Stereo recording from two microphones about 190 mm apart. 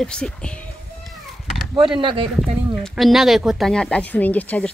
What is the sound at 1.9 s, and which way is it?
Speech, 25° right (ahead or behind).